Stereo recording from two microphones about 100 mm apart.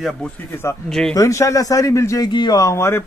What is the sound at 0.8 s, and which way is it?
Speech, 5° left (ahead or behind).